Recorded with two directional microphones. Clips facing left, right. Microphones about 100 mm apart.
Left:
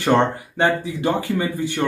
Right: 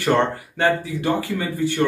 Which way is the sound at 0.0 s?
20° left (ahead or behind).